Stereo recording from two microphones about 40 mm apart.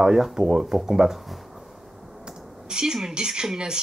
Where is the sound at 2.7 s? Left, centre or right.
Centre.